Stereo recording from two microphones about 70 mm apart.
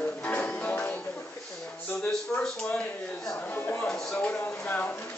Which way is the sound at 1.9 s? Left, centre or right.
Centre.